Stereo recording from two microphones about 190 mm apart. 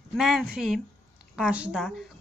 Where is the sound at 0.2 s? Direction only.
Centre (ahead or behind).